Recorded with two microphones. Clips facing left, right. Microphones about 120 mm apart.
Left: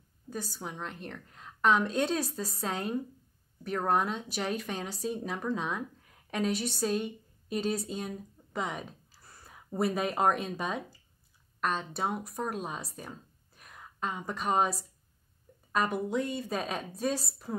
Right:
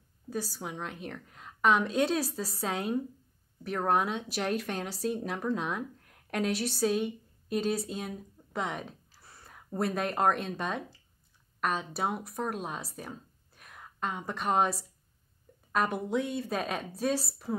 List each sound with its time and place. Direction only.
0.3 s a woman's voice: 5° right (ahead or behind)